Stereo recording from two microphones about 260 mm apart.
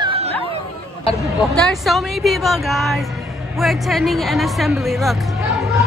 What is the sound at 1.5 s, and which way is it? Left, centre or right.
Speech, centre.